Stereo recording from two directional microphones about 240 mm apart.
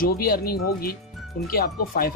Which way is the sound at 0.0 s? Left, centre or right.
Left.